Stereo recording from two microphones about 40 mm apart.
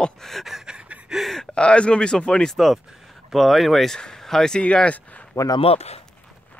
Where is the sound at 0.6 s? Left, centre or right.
Right.